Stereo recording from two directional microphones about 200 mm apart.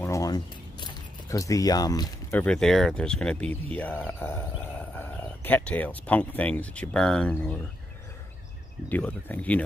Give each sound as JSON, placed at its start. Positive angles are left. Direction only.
{"t": 0.0, "sound": "a sound", "side_deg": 15}
{"t": 2.4, "sound": "speech", "side_deg": 5}
{"t": 8.8, "sound": "speech", "side_deg": 10}